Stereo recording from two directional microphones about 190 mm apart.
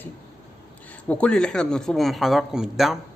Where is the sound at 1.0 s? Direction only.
5° left (ahead or behind).